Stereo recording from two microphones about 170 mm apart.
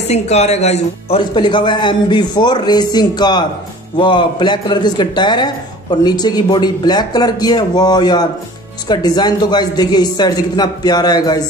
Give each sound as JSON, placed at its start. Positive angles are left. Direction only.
{"t": 0.1, "sound": "a man's voice", "side_deg": 40}